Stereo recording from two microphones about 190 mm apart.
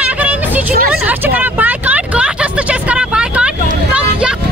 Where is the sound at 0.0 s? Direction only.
5° right (ahead or behind).